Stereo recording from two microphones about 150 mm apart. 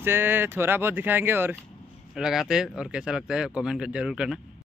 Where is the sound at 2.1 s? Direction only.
Centre (ahead or behind).